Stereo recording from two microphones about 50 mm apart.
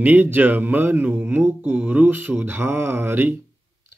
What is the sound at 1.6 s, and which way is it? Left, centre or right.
Mantra, right.